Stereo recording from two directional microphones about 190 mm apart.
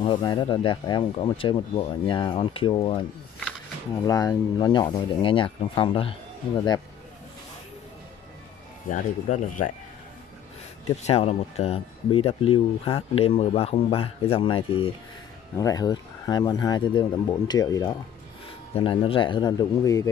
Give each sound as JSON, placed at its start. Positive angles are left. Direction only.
{"t": 0.0, "sound": "speech", "side_deg": 25}
{"t": 4.0, "sound": "speech", "side_deg": 20}
{"t": 8.8, "sound": "speech", "side_deg": 45}
{"t": 11.0, "sound": "speech", "side_deg": 35}
{"t": 15.5, "sound": "speech", "side_deg": 20}
{"t": 18.8, "sound": "speech", "side_deg": 30}